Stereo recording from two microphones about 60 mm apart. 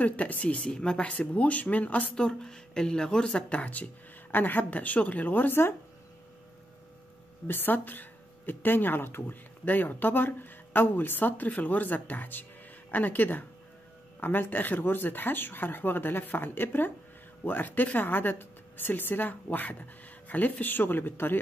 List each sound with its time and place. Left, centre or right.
0.0 s speech: left
2.1 s speech: centre; by 5.8 s left
7.4 s speech: left